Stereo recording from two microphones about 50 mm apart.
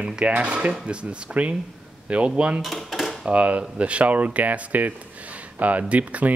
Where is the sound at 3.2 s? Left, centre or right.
Right.